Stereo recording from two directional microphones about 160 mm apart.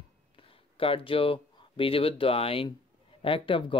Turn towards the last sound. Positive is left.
turn(degrees=35)  # may be behind; listen again after turning